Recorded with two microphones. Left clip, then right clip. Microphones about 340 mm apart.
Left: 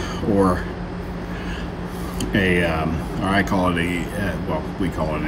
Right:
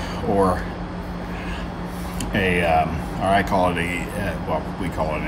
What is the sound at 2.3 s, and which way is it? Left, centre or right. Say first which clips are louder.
Speech: right 1 dB; centre.